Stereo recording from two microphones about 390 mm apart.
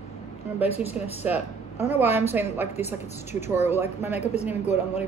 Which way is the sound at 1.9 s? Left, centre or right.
Centre.